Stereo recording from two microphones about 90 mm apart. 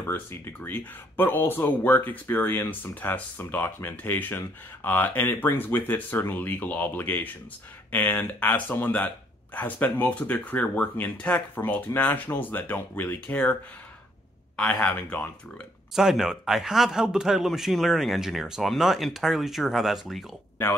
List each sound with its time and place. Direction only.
0.0 s speech: 25° left (ahead or behind)
14.6 s speech: 10° left (ahead or behind)
15.9 s a man's voice: 5° right (ahead or behind)